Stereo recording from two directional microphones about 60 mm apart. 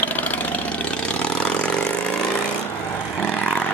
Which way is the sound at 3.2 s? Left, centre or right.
Left.